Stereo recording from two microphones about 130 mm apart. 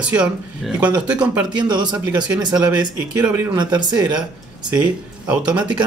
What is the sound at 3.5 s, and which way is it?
Speech, 35° right (ahead or behind).